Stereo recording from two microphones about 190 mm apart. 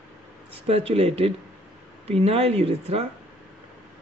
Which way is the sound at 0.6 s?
30° right (ahead or behind).